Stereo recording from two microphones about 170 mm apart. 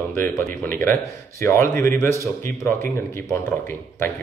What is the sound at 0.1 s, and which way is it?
Speech, 15° left (ahead or behind).